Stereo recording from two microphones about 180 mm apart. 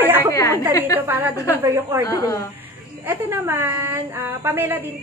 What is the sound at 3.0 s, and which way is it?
A woman's voice, 10° right (ahead or behind).